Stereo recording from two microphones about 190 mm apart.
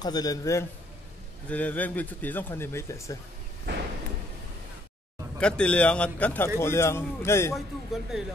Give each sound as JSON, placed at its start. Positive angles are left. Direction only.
{"t": 0.0, "sound": "a man's voice", "side_deg": 20}
{"t": 5.4, "sound": "speech", "side_deg": 5}
{"t": 7.5, "sound": "a man's voice", "side_deg": 0}